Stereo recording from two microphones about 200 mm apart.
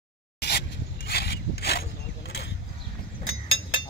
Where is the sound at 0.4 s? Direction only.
55° left (ahead or behind).